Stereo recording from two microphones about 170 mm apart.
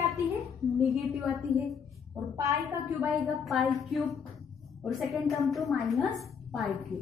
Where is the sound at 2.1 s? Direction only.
20° right (ahead or behind).